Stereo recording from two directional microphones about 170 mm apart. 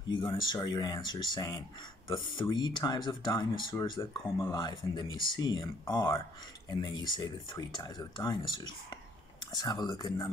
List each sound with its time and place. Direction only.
0.4 s speech: 25° left (ahead or behind)